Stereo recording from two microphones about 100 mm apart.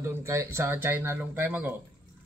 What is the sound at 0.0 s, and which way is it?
Speech, 30° right (ahead or behind).